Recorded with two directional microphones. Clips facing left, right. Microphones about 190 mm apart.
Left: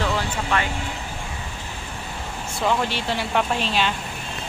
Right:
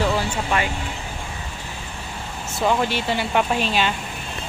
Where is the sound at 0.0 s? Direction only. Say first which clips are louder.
Right 3 dB; 10° right (ahead or behind).